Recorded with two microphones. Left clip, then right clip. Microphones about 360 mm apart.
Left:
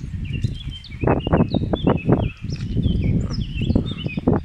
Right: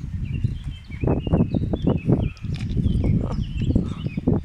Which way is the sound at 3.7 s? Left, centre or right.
Left.